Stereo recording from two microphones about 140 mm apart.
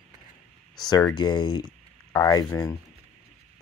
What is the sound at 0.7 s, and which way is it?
Speech, 30° left (ahead or behind).